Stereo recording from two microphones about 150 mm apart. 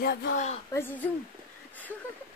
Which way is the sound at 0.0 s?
90° left.